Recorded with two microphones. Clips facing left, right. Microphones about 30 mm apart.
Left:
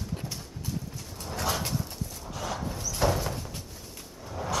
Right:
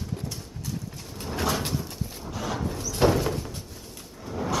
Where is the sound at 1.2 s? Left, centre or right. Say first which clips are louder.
Right 4 dB; centre.